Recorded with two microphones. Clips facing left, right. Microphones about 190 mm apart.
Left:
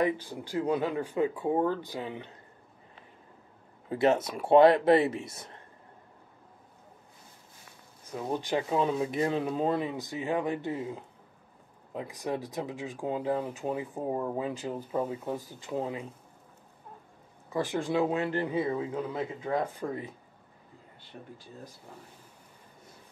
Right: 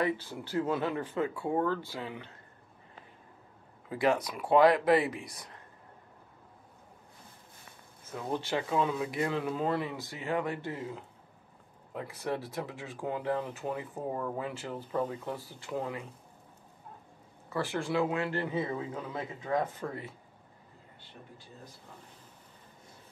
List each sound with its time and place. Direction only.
0.0 s speech: 15° left (ahead or behind)
3.9 s speech: 25° left (ahead or behind)
8.0 s speech: 15° left (ahead or behind)
8.8 s speech: 30° left (ahead or behind)
17.5 s speech: 15° left (ahead or behind)
19.6 s speech: 15° left (ahead or behind)